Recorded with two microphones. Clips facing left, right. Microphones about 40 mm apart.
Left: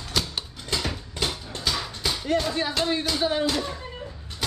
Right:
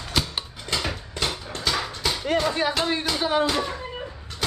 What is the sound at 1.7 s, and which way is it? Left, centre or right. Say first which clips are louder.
Dog: right 3 dB; centre.